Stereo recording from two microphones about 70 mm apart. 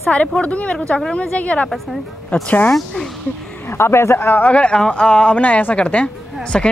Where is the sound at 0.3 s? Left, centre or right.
Centre.